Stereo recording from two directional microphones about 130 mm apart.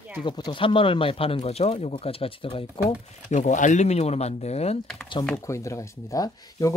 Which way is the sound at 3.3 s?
65° left (ahead or behind).